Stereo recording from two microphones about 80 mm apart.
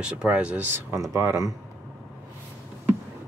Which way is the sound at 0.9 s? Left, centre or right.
Right.